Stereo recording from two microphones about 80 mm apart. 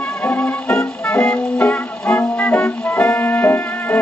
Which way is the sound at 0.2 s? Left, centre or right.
Centre.